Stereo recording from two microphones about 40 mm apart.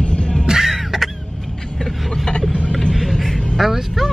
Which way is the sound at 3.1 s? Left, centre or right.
Centre.